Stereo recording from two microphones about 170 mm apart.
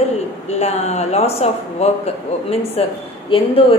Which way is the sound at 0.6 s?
40° left (ahead or behind).